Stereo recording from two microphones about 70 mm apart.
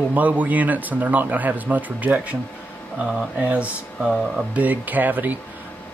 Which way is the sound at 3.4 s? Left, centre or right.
Centre.